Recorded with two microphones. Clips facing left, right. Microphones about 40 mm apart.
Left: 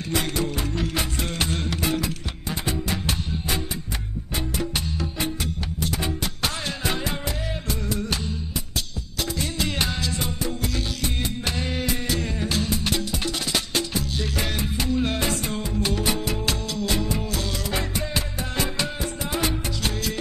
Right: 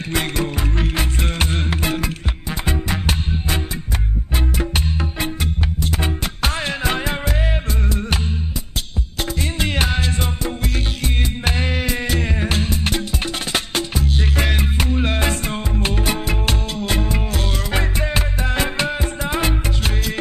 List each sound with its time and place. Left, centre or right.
0.1 s music: right
4.6 s music: right
9.2 s music: right